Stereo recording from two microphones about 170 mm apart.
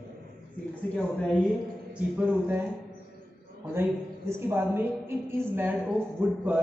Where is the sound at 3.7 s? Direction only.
15° right (ahead or behind).